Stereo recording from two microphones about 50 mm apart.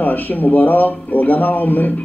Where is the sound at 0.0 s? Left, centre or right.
Left.